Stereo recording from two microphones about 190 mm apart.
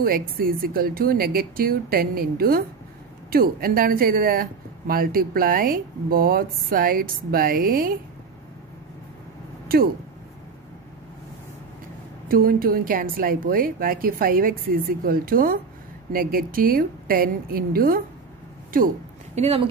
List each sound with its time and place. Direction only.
0.0 s speech: 50° right (ahead or behind)
12.3 s speech: 50° right (ahead or behind)
19.3 s speech: 35° right (ahead or behind)